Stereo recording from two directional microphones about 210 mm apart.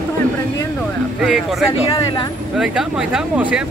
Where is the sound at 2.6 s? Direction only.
5° right (ahead or behind).